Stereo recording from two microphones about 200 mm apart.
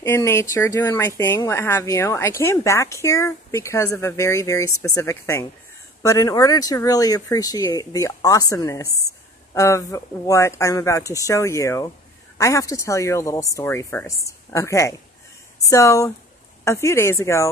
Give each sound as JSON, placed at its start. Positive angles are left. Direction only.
{"t": 0.0, "sound": "speech", "side_deg": 15}